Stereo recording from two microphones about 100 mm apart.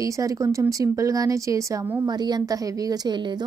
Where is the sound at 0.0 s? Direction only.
35° right (ahead or behind).